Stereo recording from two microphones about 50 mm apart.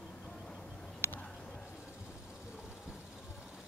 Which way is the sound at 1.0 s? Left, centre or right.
Left.